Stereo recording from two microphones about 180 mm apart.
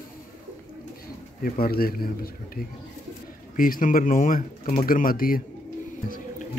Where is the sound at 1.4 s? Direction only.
55° left (ahead or behind).